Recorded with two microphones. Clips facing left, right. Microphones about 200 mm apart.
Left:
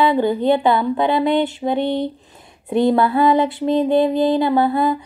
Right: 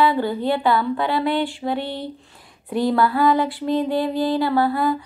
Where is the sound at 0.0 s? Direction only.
20° left (ahead or behind).